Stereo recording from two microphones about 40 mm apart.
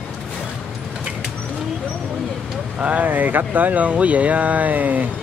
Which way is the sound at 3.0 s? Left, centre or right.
Right.